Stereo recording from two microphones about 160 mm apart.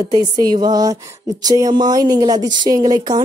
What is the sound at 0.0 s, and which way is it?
Speech, 25° right (ahead or behind).